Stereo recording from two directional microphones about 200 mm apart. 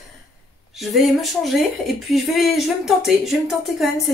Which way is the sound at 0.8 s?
Centre (ahead or behind).